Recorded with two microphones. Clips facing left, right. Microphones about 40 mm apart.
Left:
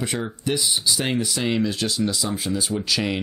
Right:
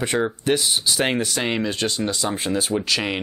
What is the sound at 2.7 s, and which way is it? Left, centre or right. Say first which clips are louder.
Speech: right 1 dB; right.